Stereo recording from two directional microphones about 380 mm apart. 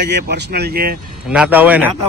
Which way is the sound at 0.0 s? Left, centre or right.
Right.